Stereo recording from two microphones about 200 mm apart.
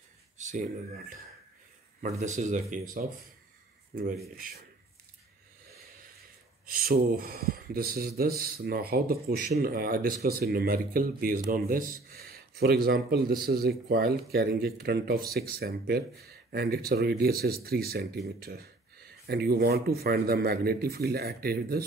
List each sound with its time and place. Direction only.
0.4 s speech: 40° right (ahead or behind)
4.4 s speech: 45° right (ahead or behind)
6.6 s speech: 50° right (ahead or behind)